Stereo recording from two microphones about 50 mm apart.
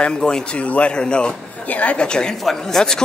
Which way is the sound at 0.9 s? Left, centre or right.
Centre.